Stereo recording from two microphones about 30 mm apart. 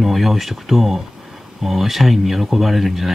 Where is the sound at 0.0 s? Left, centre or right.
Centre.